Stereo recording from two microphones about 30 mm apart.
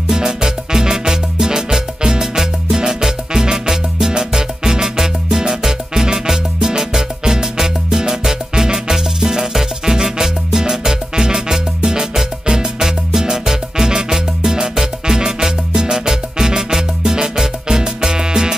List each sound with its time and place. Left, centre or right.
0.1 s music: centre